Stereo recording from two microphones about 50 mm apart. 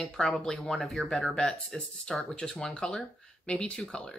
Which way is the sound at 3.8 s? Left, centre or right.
Centre.